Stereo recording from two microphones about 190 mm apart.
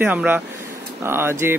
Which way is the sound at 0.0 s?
10° right (ahead or behind).